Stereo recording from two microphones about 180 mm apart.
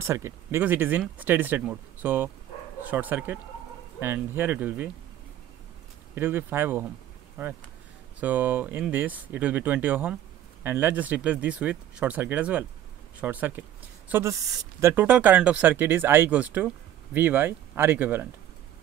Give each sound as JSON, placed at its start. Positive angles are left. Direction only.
{"t": 0.0, "sound": "speech", "side_deg": -15}
{"t": 6.1, "sound": "speech", "side_deg": -10}